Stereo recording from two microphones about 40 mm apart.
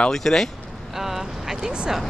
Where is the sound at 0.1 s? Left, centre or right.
Centre.